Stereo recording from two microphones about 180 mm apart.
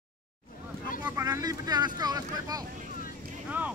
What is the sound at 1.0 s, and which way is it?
Speech, 15° right (ahead or behind).